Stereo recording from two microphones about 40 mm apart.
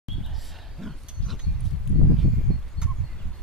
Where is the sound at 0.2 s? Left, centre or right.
Centre.